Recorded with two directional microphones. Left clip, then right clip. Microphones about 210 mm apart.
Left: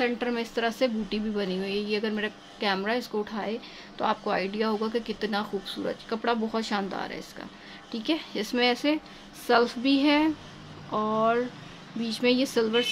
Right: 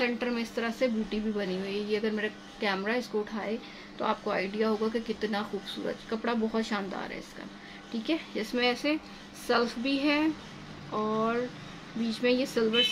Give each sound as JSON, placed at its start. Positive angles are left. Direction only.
{"t": 0.0, "sound": "speech", "side_deg": 50}